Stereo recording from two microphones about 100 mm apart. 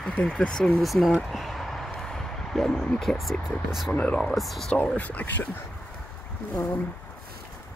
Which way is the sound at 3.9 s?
10° left (ahead or behind).